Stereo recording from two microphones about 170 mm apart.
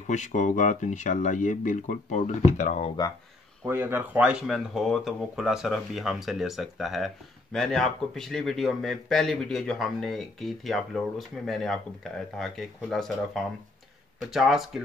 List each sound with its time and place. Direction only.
0.0 s speech: 45° left (ahead or behind)
3.6 s speech: 15° right (ahead or behind)